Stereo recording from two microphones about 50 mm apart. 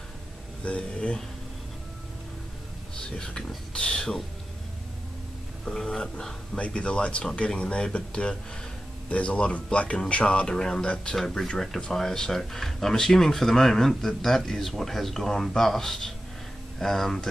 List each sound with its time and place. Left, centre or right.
0.7 s speech: left
3.2 s speech: centre
5.7 s speech: centre
6.5 s speech: left